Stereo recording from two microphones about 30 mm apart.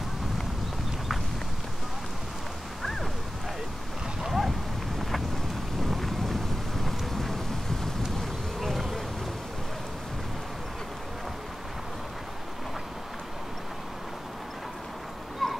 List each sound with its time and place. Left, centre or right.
4.3 s dog: centre
5.8 s vehicle: centre
6.8 s thunder: centre
8.5 s bee: centre
15.4 s a sound: centre